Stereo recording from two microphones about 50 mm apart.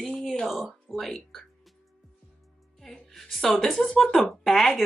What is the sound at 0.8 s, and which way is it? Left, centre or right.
Speech, centre.